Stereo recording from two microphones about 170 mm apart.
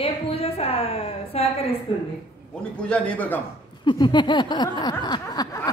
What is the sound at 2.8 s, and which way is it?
Speech, 10° left (ahead or behind).